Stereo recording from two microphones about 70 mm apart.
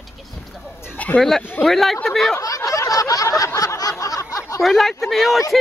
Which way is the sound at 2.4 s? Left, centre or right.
Left.